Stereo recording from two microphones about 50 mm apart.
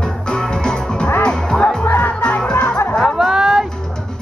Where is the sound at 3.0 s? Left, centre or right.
Centre.